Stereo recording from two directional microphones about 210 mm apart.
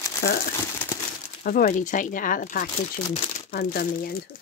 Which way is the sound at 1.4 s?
40° left (ahead or behind).